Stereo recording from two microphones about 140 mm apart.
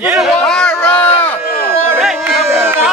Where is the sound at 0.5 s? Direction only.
5° left (ahead or behind).